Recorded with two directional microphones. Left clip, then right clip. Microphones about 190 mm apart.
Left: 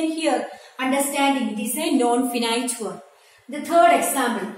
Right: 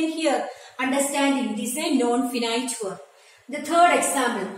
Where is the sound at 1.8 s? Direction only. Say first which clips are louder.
Left 3 dB; 20° left (ahead or behind).